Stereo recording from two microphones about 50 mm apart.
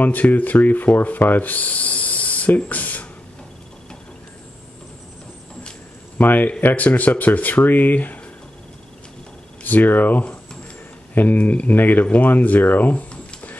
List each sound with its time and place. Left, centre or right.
0.0 s rub: left
6.1 s speech: left
9.6 s speech: left
12.9 s a sound: left